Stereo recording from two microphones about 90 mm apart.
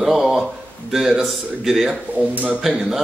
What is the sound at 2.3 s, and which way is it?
Speech, 15° right (ahead or behind).